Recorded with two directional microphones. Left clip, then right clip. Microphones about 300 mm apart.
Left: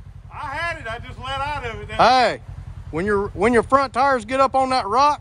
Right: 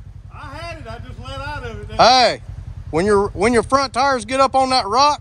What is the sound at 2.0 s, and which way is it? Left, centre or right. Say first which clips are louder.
Speech: right 3 dB; centre.